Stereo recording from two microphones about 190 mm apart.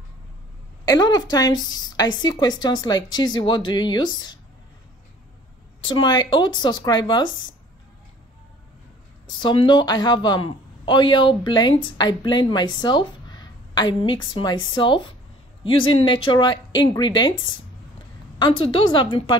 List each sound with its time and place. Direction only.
0.8 s a man's voice: 20° left (ahead or behind)
5.9 s a man's voice: 20° left (ahead or behind)
9.4 s a man's voice: 25° left (ahead or behind)
18.4 s a man's voice: 25° left (ahead or behind)